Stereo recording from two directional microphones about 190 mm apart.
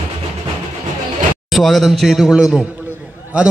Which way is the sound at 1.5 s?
Centre (ahead or behind).